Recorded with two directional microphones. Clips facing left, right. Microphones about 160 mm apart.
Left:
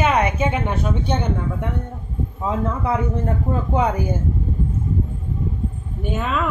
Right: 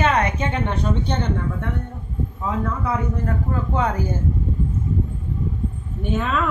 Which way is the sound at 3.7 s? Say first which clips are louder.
Left 3 dB; 15° left (ahead or behind).